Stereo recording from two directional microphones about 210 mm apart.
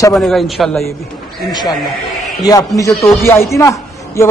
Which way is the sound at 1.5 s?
20° left (ahead or behind).